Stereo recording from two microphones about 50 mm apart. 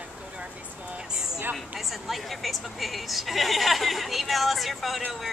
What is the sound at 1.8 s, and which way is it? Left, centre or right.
A woman's voice, centre.